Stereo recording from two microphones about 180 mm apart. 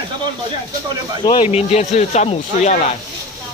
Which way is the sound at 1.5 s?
35° left (ahead or behind).